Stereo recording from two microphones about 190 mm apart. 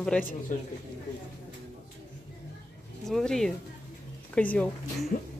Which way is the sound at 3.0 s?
Centre (ahead or behind).